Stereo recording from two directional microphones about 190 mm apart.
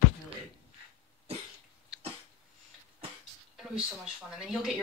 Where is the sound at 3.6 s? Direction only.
Centre (ahead or behind).